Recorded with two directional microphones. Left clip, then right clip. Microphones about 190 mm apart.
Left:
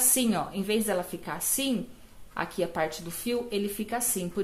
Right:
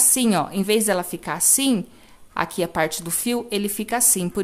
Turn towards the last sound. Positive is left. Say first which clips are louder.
# right 9 dB
turn(degrees=-30)  # may be behind; listen again after turning